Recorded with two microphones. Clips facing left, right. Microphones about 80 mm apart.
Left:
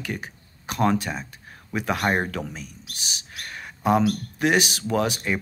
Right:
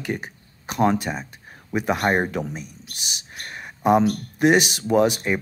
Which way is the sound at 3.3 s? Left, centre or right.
Centre.